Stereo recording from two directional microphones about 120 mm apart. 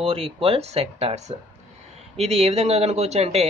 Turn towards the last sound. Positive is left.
turn(degrees=-60)  # may be behind; listen again after turning